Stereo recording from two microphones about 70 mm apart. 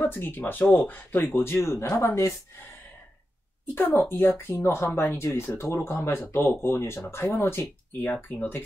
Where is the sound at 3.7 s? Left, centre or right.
Left.